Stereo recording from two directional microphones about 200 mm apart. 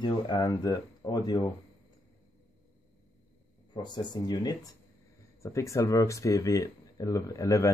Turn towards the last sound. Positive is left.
turn(degrees=15)  # may be behind; listen again after turning